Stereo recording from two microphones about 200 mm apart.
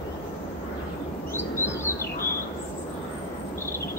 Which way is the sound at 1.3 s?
10° left (ahead or behind).